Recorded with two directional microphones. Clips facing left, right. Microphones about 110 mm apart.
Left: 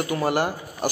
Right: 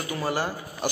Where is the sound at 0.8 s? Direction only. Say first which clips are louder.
Left 3 dB; 45° left (ahead or behind).